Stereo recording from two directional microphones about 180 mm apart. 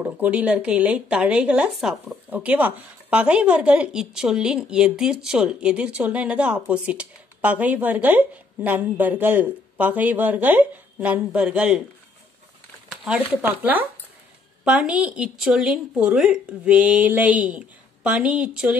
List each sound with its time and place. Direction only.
0.0 s speech: 10° right (ahead or behind)
12.9 s speech: 5° right (ahead or behind)